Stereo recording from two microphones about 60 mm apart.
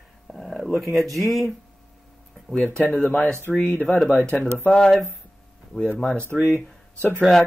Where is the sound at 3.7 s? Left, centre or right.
Left.